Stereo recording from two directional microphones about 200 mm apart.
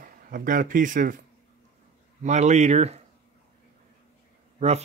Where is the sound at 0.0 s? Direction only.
40° right (ahead or behind).